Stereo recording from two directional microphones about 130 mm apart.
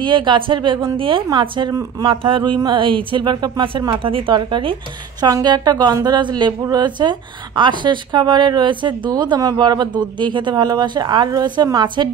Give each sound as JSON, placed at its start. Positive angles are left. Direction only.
{"t": 0.0, "sound": "speech", "side_deg": -40}